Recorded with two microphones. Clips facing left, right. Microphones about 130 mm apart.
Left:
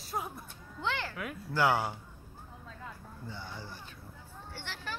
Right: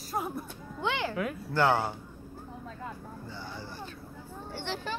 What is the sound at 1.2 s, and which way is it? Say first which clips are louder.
Speech: right 2 dB; 5° left (ahead or behind).